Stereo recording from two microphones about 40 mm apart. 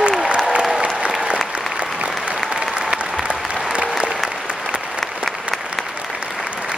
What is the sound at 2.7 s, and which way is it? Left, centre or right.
Applause, right.